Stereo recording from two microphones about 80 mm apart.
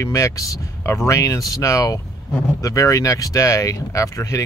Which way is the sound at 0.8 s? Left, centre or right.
Left.